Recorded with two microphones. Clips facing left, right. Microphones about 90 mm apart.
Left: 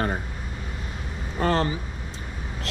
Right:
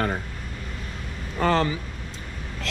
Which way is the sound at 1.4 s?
30° left (ahead or behind).